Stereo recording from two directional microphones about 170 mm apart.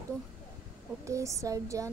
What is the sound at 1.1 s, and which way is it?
Speech, 20° right (ahead or behind).